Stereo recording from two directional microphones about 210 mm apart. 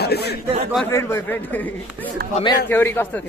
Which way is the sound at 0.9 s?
10° left (ahead or behind).